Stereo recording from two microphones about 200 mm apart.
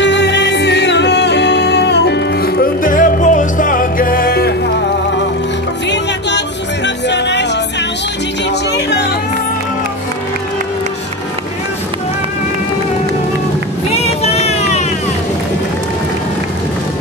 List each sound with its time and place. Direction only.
0.0 s music: 60° left (ahead or behind)
5.9 s music: 60° left (ahead or behind)
8.5 s music: 60° left (ahead or behind)
13.9 s vehicle: 30° left (ahead or behind)